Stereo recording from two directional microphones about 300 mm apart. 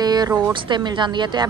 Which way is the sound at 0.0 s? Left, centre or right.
Centre.